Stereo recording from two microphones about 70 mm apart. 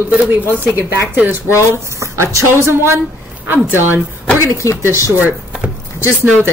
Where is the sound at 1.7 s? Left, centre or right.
Right.